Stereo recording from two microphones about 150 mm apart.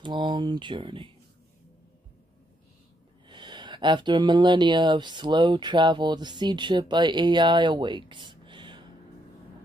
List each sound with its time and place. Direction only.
0.0 s speech: 30° right (ahead or behind)
3.3 s speech: 30° right (ahead or behind)